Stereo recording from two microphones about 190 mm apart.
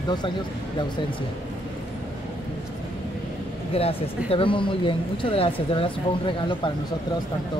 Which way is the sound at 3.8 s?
30° left (ahead or behind).